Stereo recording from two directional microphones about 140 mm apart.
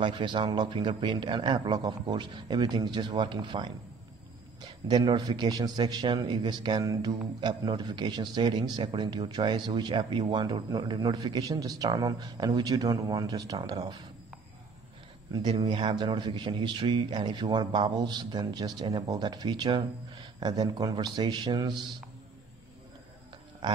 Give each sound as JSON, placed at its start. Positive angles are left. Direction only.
{"t": 0.0, "sound": "a man's voice", "side_deg": -35}
{"t": 15.3, "sound": "a man's voice", "side_deg": -30}